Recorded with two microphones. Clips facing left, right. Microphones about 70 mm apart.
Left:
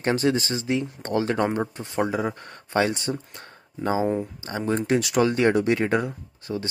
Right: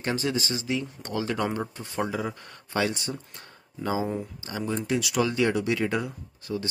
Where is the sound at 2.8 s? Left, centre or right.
Left.